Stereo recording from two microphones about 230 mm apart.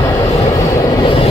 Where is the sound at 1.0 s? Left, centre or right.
Left.